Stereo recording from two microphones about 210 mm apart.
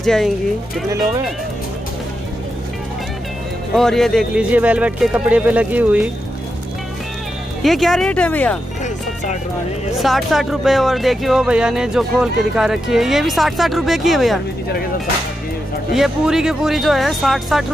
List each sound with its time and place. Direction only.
0.0 s speech: centre (ahead or behind)
3.7 s speech: centre (ahead or behind)
7.6 s speech: centre (ahead or behind)
8.8 s music: 35° left (ahead or behind)
9.9 s speech: centre (ahead or behind)
15.9 s speech: centre (ahead or behind)